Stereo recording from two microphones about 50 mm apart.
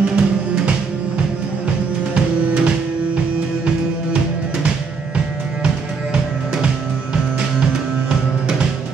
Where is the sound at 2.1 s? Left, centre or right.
Right.